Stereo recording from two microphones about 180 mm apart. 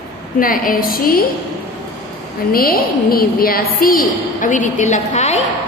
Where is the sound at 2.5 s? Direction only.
55° left (ahead or behind); by 5.4 s 40° left (ahead or behind).